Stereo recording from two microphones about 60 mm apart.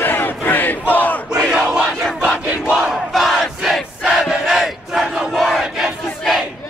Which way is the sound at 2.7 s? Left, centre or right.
Centre.